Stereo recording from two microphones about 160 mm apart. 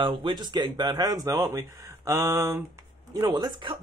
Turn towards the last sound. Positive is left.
turn(degrees=-30)  # may be behind; listen again after turning